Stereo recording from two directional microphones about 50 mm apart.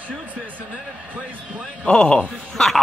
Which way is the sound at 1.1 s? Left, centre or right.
Centre.